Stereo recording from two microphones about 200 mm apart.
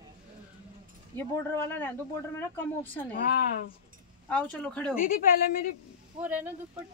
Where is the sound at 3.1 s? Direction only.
45° left (ahead or behind).